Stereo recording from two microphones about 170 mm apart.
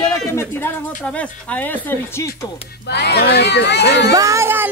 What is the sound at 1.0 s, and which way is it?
Speech, 5° left (ahead or behind).